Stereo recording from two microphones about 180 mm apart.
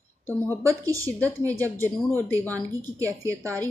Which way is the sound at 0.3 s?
10° left (ahead or behind).